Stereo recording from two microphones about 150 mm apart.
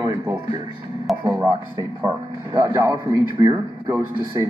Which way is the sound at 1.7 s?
25° right (ahead or behind).